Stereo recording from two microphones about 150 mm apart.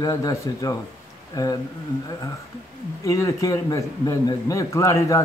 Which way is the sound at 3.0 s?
20° left (ahead or behind).